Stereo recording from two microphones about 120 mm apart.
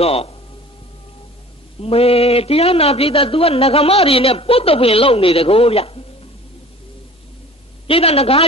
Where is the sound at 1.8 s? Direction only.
55° left (ahead or behind).